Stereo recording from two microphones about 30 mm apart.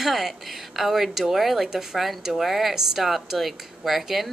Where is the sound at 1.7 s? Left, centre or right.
Centre.